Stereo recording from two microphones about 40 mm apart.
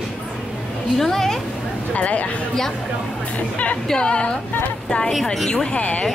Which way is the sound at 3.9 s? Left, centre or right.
Left.